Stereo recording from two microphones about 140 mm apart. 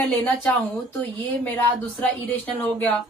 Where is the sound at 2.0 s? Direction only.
10° left (ahead or behind).